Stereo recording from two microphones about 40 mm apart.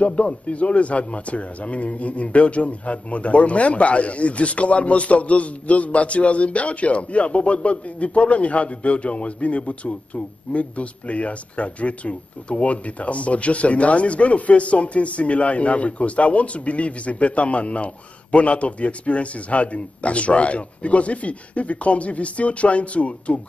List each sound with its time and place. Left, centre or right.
0.0 s a man's voice: left